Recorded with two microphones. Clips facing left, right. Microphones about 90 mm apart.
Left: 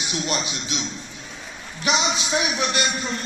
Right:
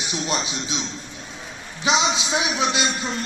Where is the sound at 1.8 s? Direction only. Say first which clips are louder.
Right 2 dB; 20° right (ahead or behind).